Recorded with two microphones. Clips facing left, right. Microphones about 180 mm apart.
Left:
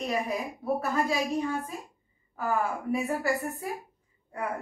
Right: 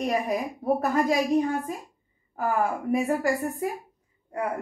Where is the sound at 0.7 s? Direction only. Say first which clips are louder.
Right 5 dB; 45° right (ahead or behind).